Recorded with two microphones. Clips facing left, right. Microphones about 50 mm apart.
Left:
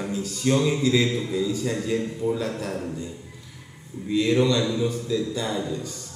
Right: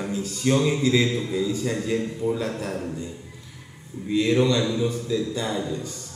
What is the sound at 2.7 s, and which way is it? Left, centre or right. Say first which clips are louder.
Speech: even; centre.